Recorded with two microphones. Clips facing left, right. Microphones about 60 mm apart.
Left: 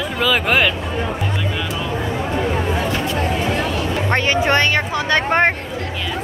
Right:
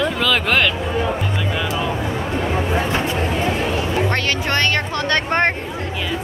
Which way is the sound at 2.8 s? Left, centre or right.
Right.